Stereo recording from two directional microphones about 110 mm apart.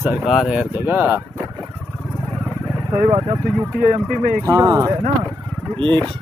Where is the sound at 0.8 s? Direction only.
15° right (ahead or behind).